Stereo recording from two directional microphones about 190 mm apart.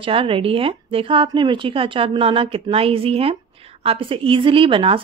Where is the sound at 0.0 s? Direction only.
30° right (ahead or behind).